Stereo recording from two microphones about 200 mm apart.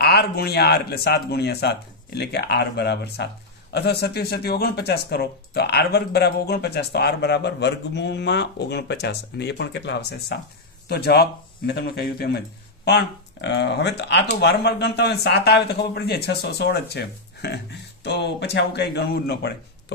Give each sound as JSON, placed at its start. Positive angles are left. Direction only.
{"t": 0.0, "sound": "speech", "side_deg": 55}